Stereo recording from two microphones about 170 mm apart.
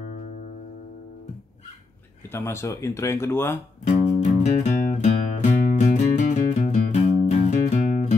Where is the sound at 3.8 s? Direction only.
45° left (ahead or behind).